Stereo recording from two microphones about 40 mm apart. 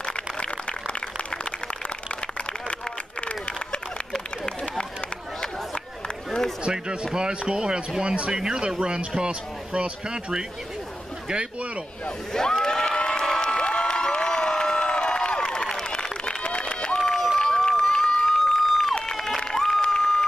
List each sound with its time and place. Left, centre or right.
0.1 s a sound: left
6.0 s run: centre
6.6 s speech: right
12.6 s cheering: centre
13.2 s crowd: centre
17.4 s run: centre
18.4 s a sound: centre
19.1 s run: centre
19.8 s a sound: centre